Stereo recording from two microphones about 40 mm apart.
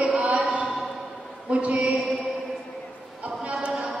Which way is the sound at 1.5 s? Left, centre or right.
Right.